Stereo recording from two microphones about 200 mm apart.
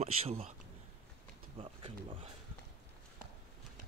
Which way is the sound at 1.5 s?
30° right (ahead or behind).